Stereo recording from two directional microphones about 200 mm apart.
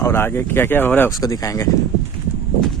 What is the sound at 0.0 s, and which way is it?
Speech, 10° left (ahead or behind).